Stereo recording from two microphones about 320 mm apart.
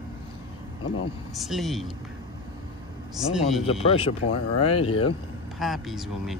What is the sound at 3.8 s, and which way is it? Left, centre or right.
Speech, centre.